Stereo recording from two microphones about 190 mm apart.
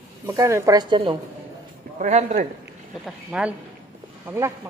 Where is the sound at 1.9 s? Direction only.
35° right (ahead or behind).